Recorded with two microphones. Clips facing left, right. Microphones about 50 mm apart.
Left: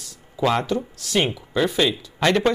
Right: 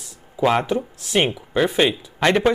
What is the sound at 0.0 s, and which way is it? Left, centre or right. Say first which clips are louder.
Speech: right 2 dB; right.